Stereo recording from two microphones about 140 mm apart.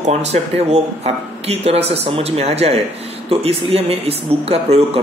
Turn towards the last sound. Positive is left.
turn(degrees=-45)  # may be behind; listen again after turning